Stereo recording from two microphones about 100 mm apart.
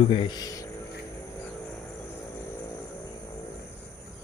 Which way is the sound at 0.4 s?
35° left (ahead or behind).